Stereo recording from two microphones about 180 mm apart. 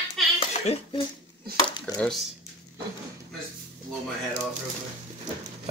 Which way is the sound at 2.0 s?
Centre (ahead or behind).